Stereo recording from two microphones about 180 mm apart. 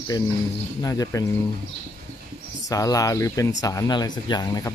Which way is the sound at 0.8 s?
20° left (ahead or behind).